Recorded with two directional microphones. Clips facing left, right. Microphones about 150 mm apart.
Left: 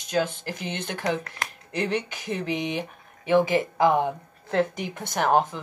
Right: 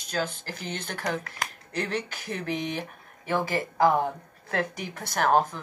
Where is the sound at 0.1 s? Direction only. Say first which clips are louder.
Left 5 dB; 20° left (ahead or behind).